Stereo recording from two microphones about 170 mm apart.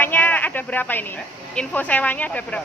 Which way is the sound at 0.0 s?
10° left (ahead or behind).